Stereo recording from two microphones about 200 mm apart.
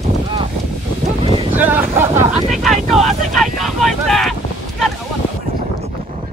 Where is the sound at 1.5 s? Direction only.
10° right (ahead or behind).